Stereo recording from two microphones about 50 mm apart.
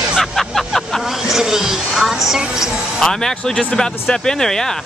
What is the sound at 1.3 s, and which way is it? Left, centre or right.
Speech, centre.